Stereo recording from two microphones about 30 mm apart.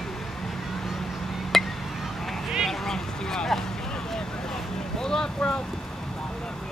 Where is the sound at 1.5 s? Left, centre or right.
Centre.